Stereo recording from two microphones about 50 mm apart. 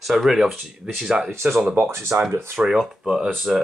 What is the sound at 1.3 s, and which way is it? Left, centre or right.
Speech, right.